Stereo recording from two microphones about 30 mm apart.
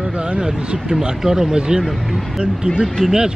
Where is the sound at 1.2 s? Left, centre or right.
Centre.